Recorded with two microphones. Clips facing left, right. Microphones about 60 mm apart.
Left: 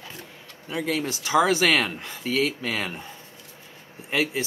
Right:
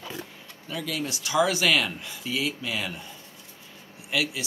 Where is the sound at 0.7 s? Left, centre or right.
Left.